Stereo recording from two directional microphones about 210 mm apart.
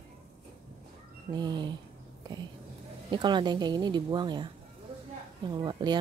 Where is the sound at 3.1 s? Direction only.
20° right (ahead or behind).